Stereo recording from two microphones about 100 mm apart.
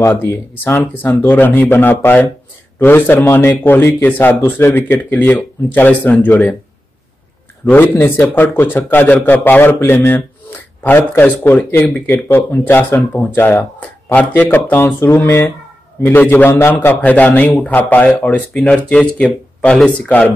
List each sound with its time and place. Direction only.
0.1 s speech: 20° left (ahead or behind)
0.7 s speech: 30° left (ahead or behind)
1.3 s speech: 15° left (ahead or behind)
7.7 s speech: 20° left (ahead or behind)